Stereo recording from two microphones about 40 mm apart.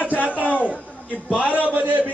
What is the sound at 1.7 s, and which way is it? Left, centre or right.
Speech, right.